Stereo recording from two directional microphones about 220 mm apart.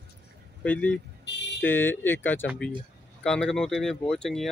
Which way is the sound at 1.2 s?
50° left (ahead or behind).